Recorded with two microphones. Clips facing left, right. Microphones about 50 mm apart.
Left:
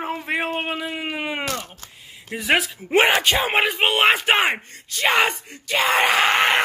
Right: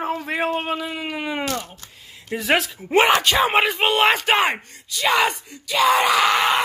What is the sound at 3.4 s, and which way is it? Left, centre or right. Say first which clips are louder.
Speech: right 2 dB; centre.